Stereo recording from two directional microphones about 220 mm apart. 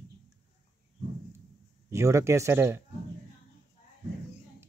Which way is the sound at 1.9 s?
15° right (ahead or behind).